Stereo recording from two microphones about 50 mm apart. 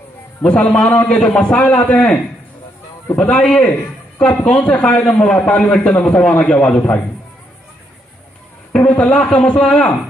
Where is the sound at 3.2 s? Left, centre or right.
Left.